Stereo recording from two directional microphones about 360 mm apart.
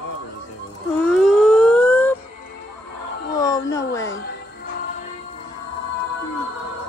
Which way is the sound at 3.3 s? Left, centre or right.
Centre.